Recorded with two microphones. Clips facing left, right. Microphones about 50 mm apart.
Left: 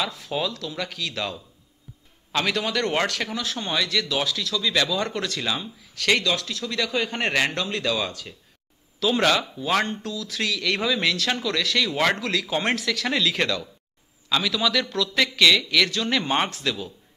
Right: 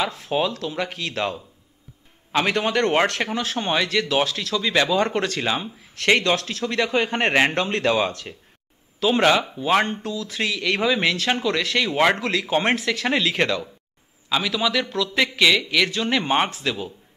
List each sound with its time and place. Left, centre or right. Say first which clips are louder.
0.0 s speech: right 4 dB; right
9.0 s a man's voice: right 3 dB; right